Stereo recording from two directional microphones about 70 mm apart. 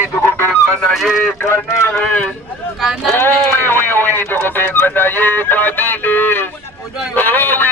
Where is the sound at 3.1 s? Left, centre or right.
Left.